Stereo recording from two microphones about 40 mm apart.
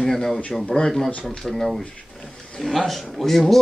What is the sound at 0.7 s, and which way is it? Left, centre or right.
Speech, left.